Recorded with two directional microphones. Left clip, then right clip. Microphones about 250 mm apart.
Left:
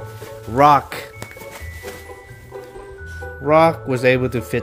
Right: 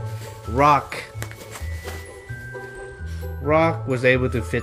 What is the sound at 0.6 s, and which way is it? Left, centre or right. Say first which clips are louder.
Speech: left 4 dB; centre.